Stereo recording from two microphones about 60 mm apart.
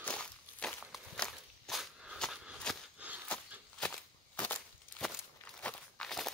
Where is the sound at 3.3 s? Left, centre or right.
Centre.